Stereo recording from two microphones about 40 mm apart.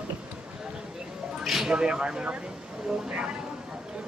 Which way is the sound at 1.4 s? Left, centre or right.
Centre.